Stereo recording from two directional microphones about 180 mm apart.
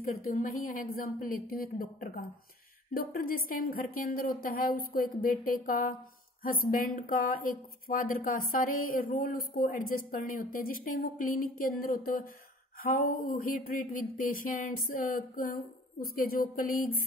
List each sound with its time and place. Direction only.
0.0 s speech: 50° left (ahead or behind)